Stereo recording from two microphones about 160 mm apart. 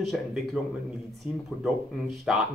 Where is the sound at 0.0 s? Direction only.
Centre (ahead or behind).